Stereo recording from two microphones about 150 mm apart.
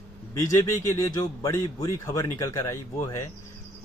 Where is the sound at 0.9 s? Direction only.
20° left (ahead or behind).